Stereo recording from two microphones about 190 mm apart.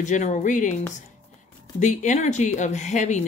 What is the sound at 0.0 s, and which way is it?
Speech, 40° left (ahead or behind).